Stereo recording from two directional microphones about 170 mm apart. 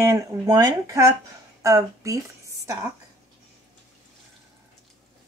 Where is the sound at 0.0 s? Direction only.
20° right (ahead or behind).